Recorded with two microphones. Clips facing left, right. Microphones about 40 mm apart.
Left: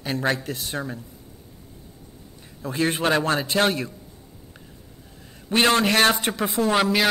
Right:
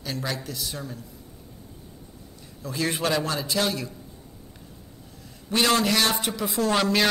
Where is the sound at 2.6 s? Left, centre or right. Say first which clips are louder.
Left 4 dB; left.